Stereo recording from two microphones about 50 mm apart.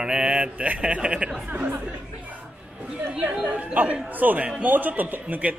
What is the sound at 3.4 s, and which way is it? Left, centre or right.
A man's voice, right.